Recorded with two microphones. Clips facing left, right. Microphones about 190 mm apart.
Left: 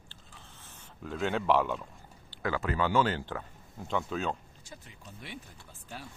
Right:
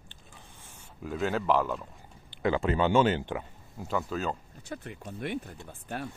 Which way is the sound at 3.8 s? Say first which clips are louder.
Right 1 dB; 5° right (ahead or behind).